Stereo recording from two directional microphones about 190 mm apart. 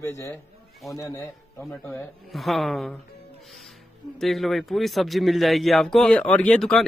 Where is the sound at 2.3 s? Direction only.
Centre (ahead or behind).